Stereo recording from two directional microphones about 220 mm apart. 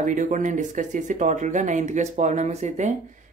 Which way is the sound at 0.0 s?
35° right (ahead or behind).